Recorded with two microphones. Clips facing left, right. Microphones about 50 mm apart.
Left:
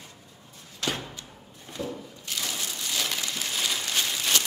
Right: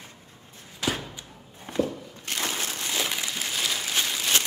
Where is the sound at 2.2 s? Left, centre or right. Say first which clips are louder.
Right 4 dB; right.